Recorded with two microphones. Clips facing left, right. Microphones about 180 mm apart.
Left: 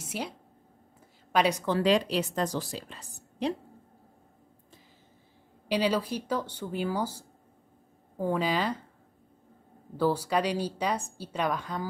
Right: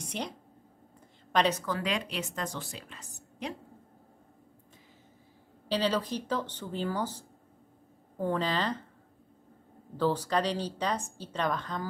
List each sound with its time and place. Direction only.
0.0 s a sound: 5° left (ahead or behind)
1.3 s a woman's voice: 10° left (ahead or behind)
1.7 s a woman's voice: 35° left (ahead or behind)
5.7 s speech: 10° left (ahead or behind)
9.9 s speech: 10° left (ahead or behind)